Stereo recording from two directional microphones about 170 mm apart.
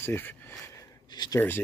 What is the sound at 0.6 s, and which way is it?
Gasp, 20° left (ahead or behind).